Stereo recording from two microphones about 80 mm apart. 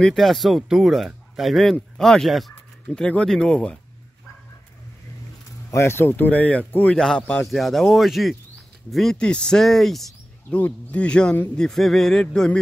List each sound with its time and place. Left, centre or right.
0.0 s speech: centre
2.9 s speech: centre
5.7 s speech: left; by 7.4 s centre
7.4 s speech: centre
10.5 s speech: left